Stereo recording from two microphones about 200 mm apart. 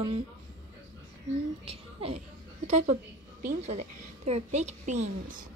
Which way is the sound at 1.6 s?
30° right (ahead or behind).